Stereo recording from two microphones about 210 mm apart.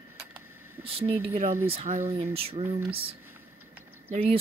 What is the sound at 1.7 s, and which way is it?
Speech, 30° right (ahead or behind).